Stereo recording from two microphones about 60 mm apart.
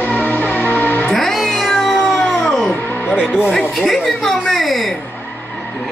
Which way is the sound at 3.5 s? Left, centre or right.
Centre.